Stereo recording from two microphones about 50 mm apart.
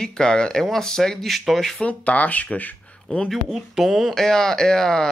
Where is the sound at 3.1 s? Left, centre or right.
Centre.